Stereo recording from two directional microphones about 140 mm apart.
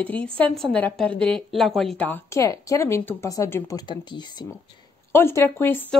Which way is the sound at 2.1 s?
15° left (ahead or behind).